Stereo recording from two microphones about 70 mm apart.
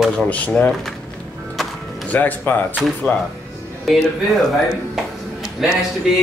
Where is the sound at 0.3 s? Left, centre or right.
Left.